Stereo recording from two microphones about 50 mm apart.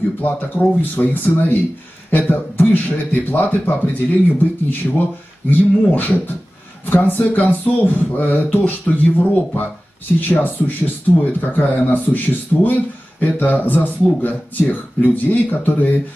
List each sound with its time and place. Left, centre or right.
0.2 s speech: left